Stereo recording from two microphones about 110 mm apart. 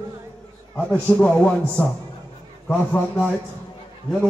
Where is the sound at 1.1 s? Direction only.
10° left (ahead or behind).